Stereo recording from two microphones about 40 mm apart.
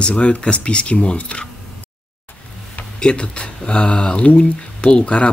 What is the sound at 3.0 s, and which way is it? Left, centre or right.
Speech, left.